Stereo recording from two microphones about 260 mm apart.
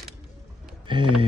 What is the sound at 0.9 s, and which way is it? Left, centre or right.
Speech, centre.